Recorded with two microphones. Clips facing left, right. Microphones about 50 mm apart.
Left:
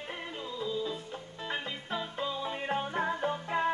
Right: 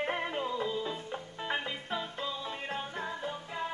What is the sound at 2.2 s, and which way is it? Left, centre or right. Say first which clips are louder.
Music: left 3 dB; centre.